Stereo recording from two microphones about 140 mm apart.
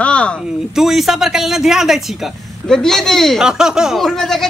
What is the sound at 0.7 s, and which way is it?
Speech, centre (ahead or behind).